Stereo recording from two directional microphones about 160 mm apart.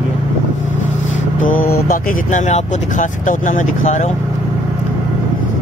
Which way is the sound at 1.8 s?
60° left (ahead or behind).